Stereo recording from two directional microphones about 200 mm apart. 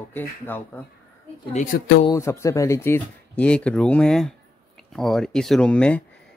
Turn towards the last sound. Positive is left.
turn(degrees=5)  # may be behind; listen again after turning